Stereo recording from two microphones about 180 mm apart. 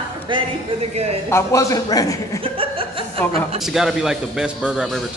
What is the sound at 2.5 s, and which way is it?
Chuckle, 30° right (ahead or behind).